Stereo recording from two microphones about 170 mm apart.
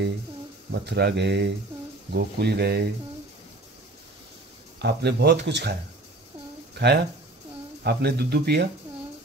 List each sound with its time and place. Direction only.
0.7 s speech: 80° right
2.1 s speech: 70° right (ahead or behind)
4.8 s speech: 75° right (ahead or behind)
6.7 s a sound: 75° right (ahead or behind)
7.8 s speech: 75° right (ahead or behind)